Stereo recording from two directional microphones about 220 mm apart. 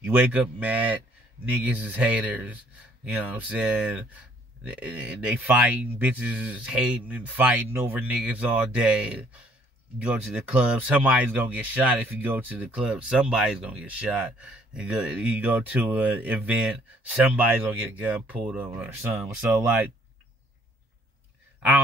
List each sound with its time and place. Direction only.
0.0 s speech: 5° right (ahead or behind)